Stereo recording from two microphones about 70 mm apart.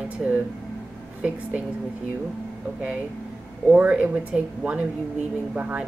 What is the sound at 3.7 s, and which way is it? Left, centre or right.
A woman's voice, centre.